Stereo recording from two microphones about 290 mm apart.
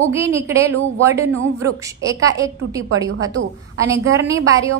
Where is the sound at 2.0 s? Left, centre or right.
Centre.